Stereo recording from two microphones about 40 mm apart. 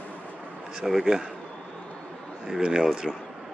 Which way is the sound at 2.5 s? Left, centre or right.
Right.